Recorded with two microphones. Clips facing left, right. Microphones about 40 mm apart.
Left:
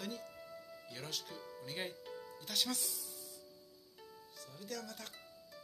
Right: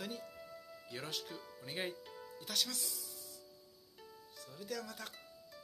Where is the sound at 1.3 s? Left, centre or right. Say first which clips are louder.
Even; centre.